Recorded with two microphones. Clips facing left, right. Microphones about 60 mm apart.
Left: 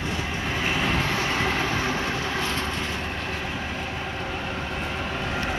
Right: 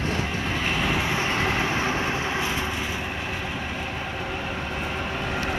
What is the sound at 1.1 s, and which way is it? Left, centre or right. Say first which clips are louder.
Vehicle: even; centre.